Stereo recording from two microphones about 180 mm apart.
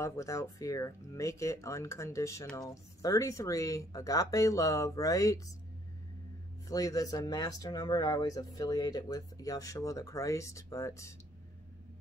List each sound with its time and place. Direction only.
0.0 s speech: 15° left (ahead or behind)
6.7 s speech: 20° left (ahead or behind)